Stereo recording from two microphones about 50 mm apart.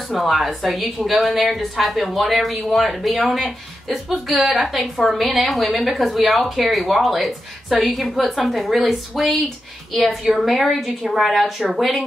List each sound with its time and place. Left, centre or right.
0.1 s a woman's voice: centre